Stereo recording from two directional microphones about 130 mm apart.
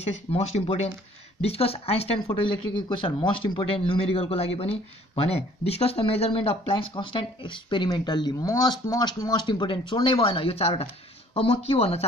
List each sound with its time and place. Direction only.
0.0 s speech: 55° left (ahead or behind)